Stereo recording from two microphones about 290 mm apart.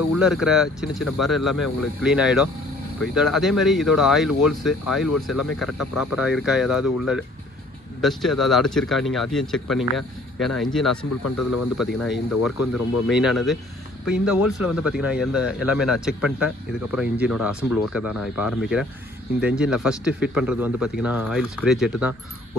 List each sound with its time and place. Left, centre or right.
0.2 s speech: centre
11.2 s speech: left
11.8 s speech: centre